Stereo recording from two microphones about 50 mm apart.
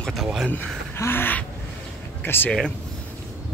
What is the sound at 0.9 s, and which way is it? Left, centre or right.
Gasp, left.